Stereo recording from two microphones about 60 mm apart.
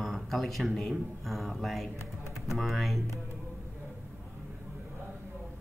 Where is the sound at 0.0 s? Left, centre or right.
Centre.